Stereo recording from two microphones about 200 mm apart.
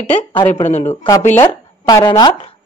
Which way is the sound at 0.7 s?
35° left (ahead or behind).